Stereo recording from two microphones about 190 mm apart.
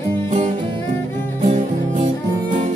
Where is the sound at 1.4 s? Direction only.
35° right (ahead or behind).